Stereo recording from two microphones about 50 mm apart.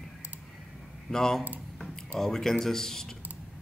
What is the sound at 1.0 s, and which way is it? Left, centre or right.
A man's voice, centre.